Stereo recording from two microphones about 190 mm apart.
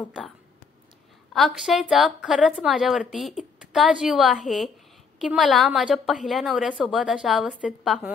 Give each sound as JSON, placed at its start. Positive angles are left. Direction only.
{"t": 1.3, "sound": "a woman's voice", "side_deg": 0}